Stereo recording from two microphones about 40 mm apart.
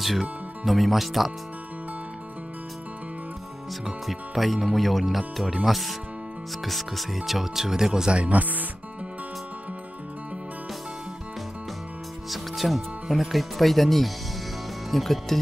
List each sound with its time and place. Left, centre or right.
0.0 s speech: centre
3.8 s speech: centre
8.1 s speech: right
12.3 s speech: centre